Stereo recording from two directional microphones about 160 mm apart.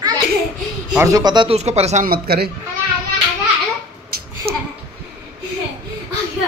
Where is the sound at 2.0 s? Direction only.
70° right (ahead or behind).